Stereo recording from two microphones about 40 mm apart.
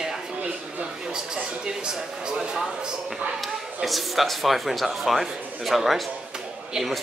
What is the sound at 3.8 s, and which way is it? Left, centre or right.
A man's voice, centre.